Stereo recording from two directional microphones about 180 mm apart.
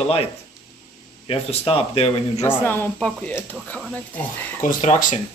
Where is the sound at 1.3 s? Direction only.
30° left (ahead or behind).